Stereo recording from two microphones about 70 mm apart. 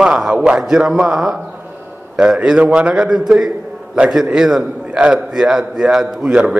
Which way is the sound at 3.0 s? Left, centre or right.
Centre.